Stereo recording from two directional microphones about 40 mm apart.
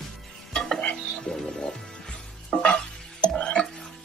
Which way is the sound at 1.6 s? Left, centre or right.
Centre.